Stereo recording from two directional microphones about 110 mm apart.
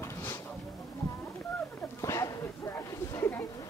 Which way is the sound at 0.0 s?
25° left (ahead or behind).